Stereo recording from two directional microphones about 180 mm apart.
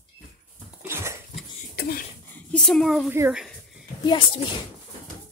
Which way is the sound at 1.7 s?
60° left (ahead or behind).